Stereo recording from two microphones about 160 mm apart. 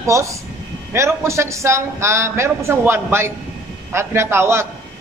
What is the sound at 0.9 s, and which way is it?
A man's voice, 15° right (ahead or behind).